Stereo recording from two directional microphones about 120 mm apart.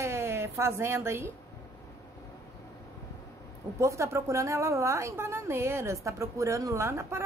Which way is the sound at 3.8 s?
25° right (ahead or behind).